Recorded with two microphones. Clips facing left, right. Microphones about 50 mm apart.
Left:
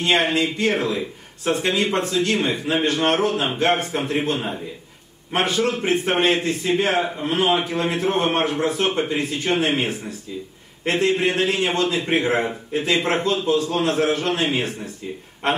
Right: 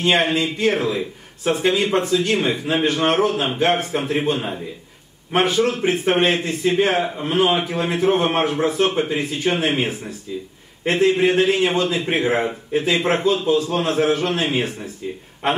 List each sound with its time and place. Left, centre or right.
0.0 s a man's voice: centre